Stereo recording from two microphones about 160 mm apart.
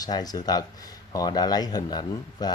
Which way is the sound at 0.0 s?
25° left (ahead or behind).